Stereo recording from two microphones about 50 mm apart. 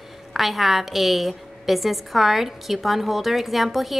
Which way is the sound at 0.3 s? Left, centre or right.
Centre.